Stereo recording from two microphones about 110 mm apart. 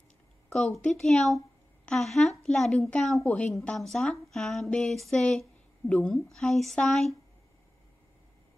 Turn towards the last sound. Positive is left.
turn(degrees=5)  # may be behind; listen again after turning